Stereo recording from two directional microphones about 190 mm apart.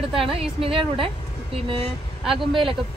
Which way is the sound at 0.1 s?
30° right (ahead or behind).